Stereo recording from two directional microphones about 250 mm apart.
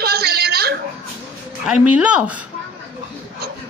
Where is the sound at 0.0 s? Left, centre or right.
Right.